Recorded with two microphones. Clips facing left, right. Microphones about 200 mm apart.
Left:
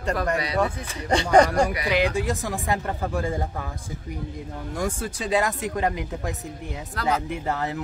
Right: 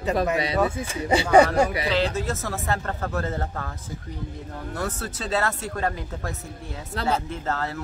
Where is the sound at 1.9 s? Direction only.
15° left (ahead or behind).